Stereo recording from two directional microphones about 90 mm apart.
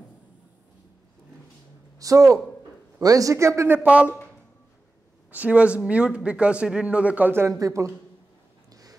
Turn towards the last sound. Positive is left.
turn(degrees=-35)  # may be behind; listen again after turning